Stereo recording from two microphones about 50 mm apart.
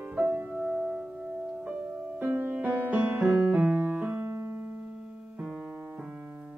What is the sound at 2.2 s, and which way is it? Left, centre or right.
Music, right.